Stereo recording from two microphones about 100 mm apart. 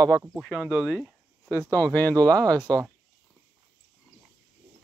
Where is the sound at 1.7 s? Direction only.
20° left (ahead or behind).